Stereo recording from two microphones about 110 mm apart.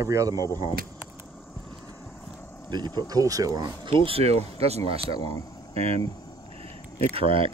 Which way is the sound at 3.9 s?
55° right (ahead or behind).